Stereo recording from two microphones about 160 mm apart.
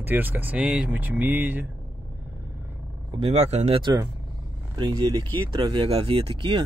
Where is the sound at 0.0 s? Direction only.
10° right (ahead or behind).